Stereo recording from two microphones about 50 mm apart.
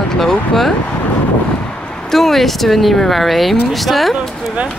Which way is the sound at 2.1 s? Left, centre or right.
Centre.